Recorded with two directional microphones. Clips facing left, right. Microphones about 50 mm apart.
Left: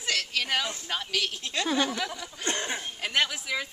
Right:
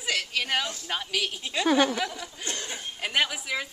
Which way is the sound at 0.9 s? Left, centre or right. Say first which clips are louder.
Right 1 dB; centre.